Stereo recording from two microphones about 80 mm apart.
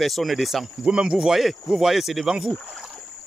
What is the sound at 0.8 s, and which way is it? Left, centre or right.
Speech, centre.